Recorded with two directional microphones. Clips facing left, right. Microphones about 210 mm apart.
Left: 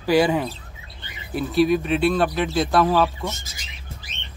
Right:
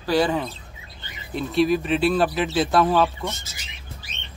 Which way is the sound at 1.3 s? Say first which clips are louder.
Left 1 dB; centre (ahead or behind).